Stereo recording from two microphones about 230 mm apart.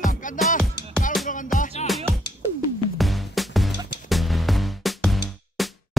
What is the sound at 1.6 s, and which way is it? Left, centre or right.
Music, left.